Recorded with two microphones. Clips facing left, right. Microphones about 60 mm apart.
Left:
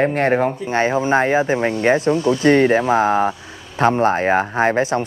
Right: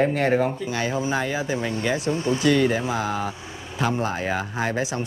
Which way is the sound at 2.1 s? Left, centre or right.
Right.